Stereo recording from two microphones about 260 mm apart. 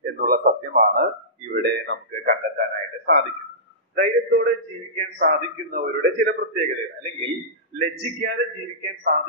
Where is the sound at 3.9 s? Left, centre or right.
Right.